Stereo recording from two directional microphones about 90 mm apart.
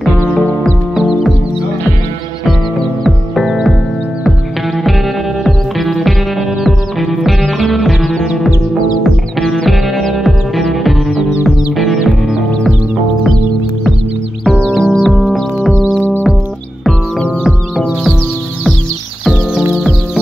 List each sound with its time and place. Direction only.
0.9 s music: 5° right (ahead or behind)
3.0 s music: centre (ahead or behind)
5.4 s music: centre (ahead or behind)
14.4 s music: 5° left (ahead or behind)
17.4 s chicken: centre (ahead or behind)